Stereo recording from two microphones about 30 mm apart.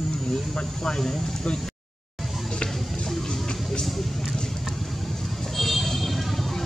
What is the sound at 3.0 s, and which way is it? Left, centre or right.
Music, centre.